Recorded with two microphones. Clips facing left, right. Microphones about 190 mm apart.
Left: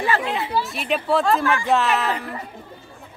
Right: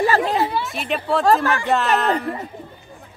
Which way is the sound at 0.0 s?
40° right (ahead or behind).